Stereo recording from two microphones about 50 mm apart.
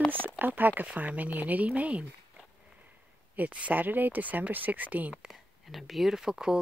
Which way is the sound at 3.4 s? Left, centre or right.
Right.